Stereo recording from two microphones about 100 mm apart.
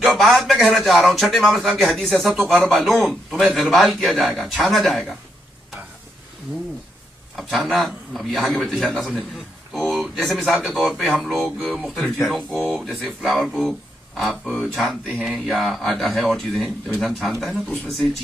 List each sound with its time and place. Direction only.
0.0 s speech: centre (ahead or behind)
7.3 s speech: centre (ahead or behind)